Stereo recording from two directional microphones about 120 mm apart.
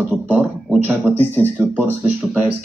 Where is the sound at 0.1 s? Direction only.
15° right (ahead or behind).